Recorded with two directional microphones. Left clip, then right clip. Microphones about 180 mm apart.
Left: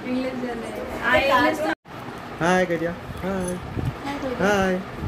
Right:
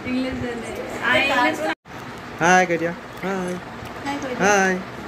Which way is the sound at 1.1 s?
60° left (ahead or behind).